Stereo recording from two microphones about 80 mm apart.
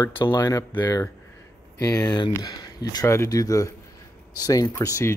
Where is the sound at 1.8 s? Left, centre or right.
Left.